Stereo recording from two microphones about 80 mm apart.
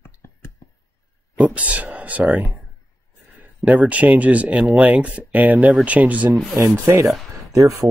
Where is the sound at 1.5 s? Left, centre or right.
Centre.